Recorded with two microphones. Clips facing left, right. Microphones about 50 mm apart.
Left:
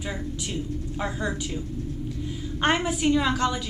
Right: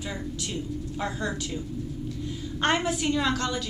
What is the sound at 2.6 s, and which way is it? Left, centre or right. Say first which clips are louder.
A woman's voice: left 2 dB; centre.